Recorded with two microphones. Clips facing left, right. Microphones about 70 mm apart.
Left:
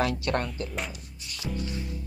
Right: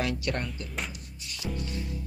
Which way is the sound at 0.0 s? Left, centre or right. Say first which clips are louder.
Left 4 dB; left.